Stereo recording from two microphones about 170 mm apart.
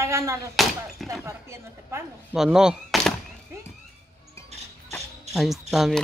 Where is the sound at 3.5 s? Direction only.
15° right (ahead or behind).